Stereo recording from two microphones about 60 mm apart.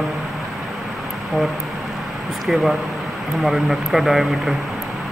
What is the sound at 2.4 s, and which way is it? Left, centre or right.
Speech, centre.